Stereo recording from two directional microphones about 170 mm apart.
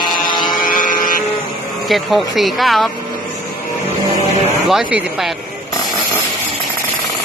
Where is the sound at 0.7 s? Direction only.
55° left (ahead or behind).